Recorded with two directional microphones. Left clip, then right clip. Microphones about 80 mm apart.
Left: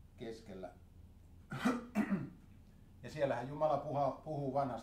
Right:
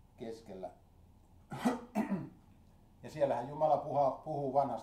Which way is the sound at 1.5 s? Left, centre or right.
Left.